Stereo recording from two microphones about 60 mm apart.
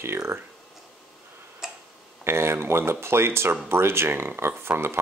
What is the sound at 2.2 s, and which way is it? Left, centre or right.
Speech, right.